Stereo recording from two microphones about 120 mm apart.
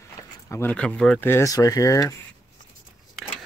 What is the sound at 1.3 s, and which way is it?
Speech, 25° left (ahead or behind).